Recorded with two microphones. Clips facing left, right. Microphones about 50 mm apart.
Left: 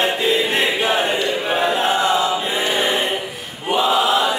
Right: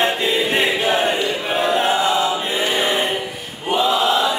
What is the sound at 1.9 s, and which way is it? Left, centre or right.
Choir, left.